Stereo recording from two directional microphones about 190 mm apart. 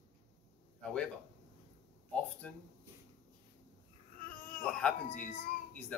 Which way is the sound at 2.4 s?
5° left (ahead or behind).